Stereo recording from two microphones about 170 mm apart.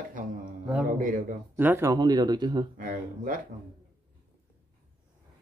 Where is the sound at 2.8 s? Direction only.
55° right (ahead or behind).